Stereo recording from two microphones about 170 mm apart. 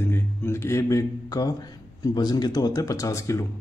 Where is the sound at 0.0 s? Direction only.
15° left (ahead or behind).